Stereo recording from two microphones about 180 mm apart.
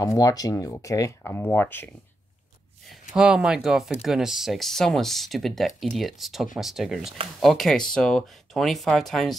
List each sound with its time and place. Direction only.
0.0 s speech: 20° left (ahead or behind)
2.9 s speech: 5° right (ahead or behind)